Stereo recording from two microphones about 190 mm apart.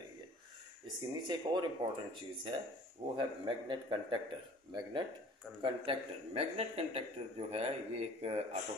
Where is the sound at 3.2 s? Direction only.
25° right (ahead or behind).